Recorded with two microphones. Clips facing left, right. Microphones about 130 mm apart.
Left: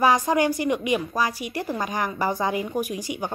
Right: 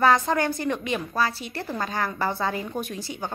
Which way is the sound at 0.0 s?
15° left (ahead or behind).